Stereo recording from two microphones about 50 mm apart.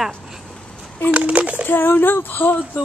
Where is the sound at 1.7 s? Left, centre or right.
Left.